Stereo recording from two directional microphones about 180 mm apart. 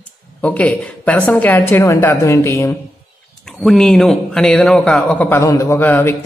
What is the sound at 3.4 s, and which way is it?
A man's voice, centre (ahead or behind).